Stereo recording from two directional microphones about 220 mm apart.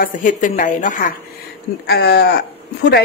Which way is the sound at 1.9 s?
50° left (ahead or behind).